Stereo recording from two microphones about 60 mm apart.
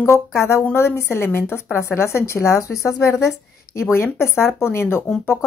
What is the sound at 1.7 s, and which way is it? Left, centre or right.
A woman's voice, left.